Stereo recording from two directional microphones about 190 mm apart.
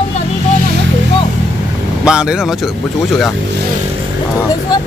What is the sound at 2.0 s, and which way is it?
Speech, 5° right (ahead or behind).